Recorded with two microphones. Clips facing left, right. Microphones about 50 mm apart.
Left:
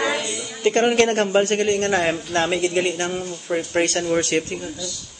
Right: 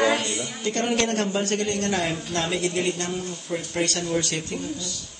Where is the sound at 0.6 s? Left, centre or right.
Left.